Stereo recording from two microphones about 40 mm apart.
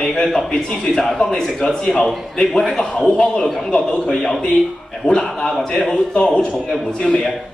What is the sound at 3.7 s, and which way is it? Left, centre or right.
Speech, centre.